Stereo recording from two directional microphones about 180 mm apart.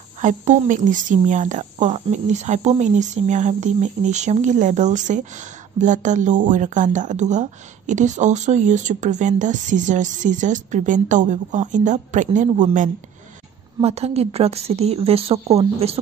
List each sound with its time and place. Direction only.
0.2 s a woman's voice: 45° right (ahead or behind)